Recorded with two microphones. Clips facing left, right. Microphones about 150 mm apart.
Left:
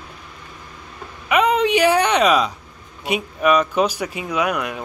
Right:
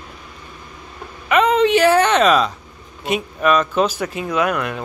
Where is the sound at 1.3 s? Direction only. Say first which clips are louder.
Right 2 dB; 10° left (ahead or behind).